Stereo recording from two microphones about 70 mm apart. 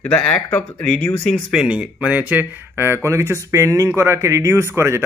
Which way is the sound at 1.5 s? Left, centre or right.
Centre.